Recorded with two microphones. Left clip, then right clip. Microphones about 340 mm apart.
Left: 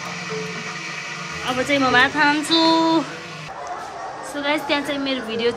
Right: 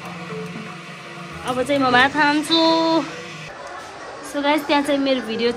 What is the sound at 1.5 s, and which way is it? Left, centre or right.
Speech, centre.